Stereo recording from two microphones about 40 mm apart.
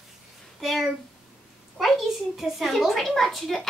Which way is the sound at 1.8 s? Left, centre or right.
Centre.